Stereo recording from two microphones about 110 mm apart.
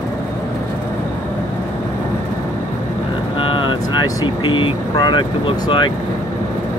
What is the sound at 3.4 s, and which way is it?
Vehicle, 50° left (ahead or behind).